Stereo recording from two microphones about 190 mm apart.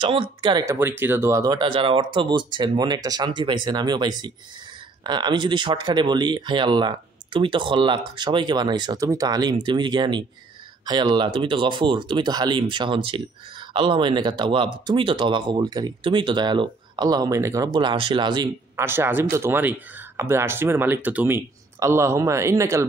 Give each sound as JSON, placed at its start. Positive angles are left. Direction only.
{"t": 0.0, "sound": "speech", "side_deg": -25}